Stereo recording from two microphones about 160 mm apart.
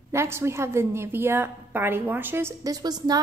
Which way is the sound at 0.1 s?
15° right (ahead or behind).